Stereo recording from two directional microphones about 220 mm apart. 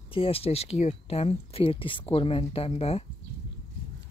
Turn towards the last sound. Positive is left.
turn(degrees=30)  # may be behind; listen again after turning